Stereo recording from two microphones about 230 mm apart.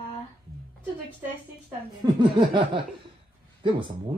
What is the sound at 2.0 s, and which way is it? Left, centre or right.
Speech, right.